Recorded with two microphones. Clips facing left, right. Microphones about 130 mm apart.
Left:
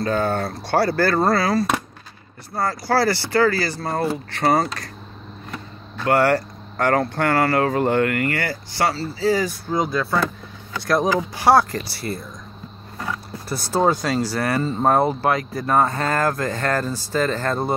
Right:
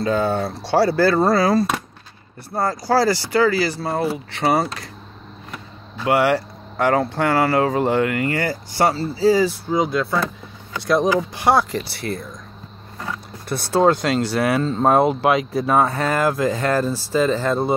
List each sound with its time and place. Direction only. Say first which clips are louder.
0.2 s speech: right 1 dB; 5° right (ahead or behind)
5.9 s speech: even; 10° right (ahead or behind); by 9.6 s 30° right (ahead or behind)
9.7 s speech: right 2 dB; 5° right (ahead or behind)
13.5 s speech: right 3 dB; centre (ahead or behind)